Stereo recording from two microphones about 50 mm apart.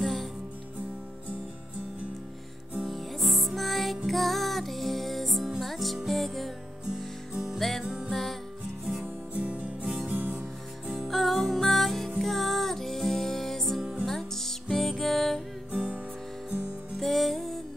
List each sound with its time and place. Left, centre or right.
0.0 s music: centre
2.9 s music: centre
7.8 s music: centre
8.1 s music: centre
9.0 s music: right
11.1 s music: centre
15.7 s music: right
17.0 s music: centre